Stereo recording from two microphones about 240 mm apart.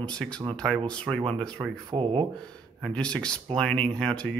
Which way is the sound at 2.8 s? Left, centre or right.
Centre.